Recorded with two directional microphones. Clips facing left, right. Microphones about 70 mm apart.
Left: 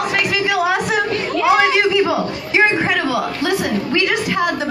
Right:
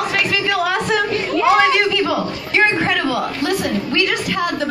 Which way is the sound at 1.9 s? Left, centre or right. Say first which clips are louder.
Left 2 dB; left.